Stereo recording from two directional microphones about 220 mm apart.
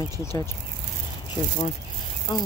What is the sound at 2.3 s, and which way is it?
Speech, 20° left (ahead or behind).